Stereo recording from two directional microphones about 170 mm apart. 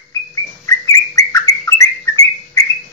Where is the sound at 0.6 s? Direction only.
20° left (ahead or behind).